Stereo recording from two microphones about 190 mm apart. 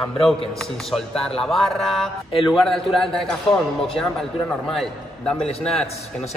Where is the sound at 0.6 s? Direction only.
Centre (ahead or behind).